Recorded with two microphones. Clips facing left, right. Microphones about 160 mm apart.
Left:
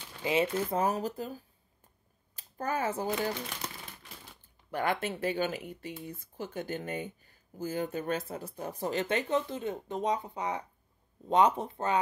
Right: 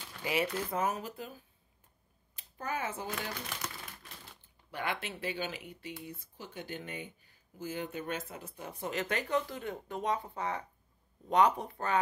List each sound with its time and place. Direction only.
0.2 s speech: 25° left (ahead or behind); by 3.1 s 40° left (ahead or behind)
4.6 s speech: 45° left (ahead or behind); by 12.0 s 20° left (ahead or behind)